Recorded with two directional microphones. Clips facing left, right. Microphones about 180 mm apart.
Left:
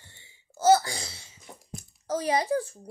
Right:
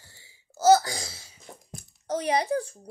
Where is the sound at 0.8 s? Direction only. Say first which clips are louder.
Right 1 dB; 45° right (ahead or behind).